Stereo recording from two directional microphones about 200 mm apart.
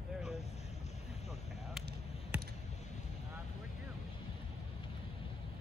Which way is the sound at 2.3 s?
5° right (ahead or behind).